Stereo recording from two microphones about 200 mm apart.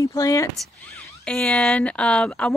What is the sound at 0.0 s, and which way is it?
Speech, 15° left (ahead or behind).